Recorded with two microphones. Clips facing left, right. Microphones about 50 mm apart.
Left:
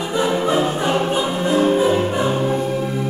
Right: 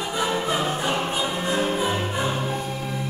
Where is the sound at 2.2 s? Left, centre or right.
Left.